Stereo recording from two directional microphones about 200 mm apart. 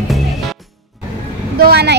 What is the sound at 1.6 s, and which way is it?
Vehicle, 50° right (ahead or behind).